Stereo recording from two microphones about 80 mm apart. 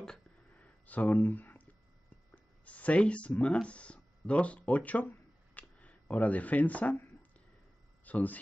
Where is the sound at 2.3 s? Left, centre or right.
Centre.